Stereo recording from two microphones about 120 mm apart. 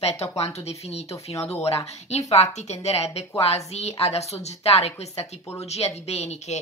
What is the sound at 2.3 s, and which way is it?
A woman's voice, 65° left (ahead or behind).